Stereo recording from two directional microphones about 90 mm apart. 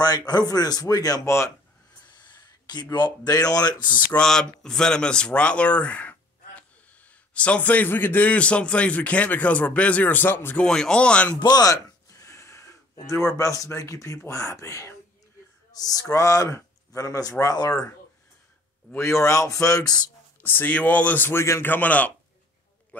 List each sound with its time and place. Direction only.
0.3 s speech: 50° left (ahead or behind); by 1.5 s 35° left (ahead or behind)
2.1 s speech: 50° left (ahead or behind)
4.1 s speech: 5° left (ahead or behind); by 10.6 s 25° left (ahead or behind)
10.6 s speech: 10° left (ahead or behind)
11.3 s speech: 50° left (ahead or behind)
18.9 s speech: 35° left (ahead or behind)
20.4 s speech: 20° left (ahead or behind)